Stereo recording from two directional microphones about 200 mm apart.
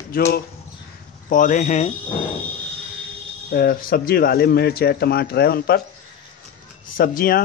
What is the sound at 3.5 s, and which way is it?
Speech, 45° left (ahead or behind).